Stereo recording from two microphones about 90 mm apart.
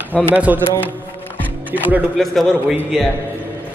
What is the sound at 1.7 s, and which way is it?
Speech, 20° right (ahead or behind).